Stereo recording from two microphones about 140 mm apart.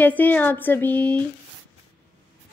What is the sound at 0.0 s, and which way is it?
A woman's voice, 10° left (ahead or behind).